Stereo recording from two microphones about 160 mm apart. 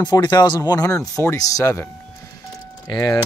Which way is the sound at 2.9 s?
25° left (ahead or behind).